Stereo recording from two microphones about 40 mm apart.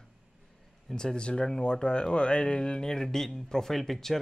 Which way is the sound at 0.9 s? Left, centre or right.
Left.